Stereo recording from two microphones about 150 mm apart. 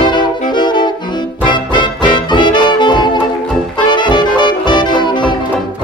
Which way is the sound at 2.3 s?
30° left (ahead or behind).